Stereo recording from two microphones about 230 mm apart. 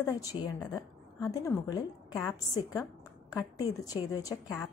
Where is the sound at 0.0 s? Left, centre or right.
Centre.